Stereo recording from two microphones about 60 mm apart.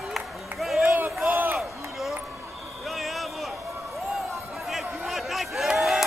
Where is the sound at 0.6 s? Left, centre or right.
Centre.